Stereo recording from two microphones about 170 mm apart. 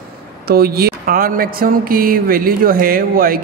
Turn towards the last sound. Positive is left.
turn(degrees=-60)  # may be behind; listen again after turning